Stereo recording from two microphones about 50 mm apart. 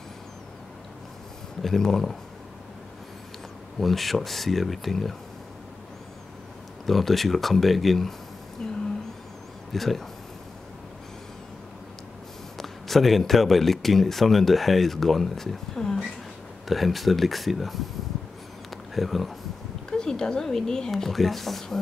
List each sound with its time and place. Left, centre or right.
1.6 s speech: centre
3.8 s speech: centre
6.9 s speech: centre
8.6 s a sound: centre
9.7 s speech: centre
12.5 s speech: centre
18.9 s speech: centre
19.9 s speech: centre